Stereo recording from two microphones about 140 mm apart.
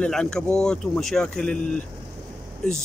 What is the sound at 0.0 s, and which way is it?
Speech, 5° left (ahead or behind).